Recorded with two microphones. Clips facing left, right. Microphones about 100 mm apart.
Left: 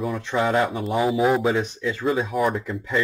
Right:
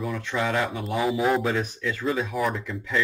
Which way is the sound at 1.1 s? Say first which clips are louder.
Left 3 dB; 10° left (ahead or behind).